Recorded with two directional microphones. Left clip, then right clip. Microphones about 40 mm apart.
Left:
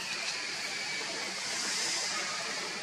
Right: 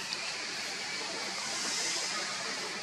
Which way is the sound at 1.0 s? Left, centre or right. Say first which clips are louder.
Even; centre.